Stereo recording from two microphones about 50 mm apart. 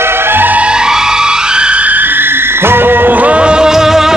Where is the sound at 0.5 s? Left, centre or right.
Centre.